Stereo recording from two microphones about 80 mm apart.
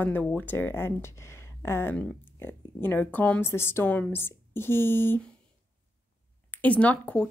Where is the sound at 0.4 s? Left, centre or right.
Left.